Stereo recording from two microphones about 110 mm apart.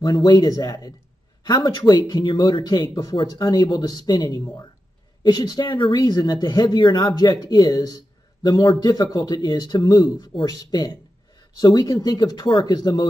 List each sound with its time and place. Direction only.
0.0 s speech: 40° left (ahead or behind)